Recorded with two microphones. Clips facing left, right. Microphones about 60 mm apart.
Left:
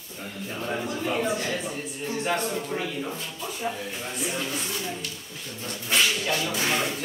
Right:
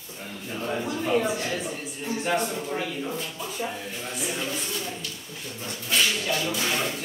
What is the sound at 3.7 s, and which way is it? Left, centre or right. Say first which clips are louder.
Speech: left 2 dB; centre.